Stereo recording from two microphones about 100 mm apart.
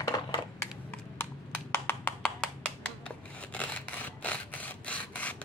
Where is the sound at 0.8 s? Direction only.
15° left (ahead or behind).